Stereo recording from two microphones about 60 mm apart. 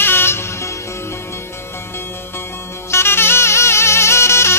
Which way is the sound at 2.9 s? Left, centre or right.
Left.